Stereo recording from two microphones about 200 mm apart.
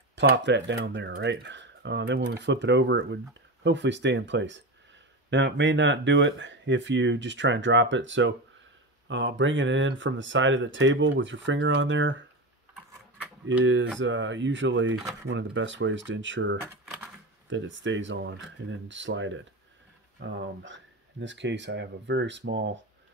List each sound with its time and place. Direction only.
0.1 s speech: 60° right (ahead or behind)
13.9 s speech: 65° right (ahead or behind)
16.8 s a sound: 5° right (ahead or behind)
17.5 s speech: 65° right (ahead or behind)